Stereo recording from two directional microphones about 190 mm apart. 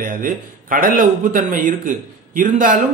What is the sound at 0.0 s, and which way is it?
A man's voice, 45° right (ahead or behind).